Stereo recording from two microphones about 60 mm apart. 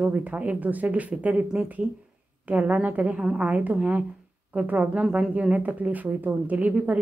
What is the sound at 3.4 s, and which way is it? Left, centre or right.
A woman's voice, right.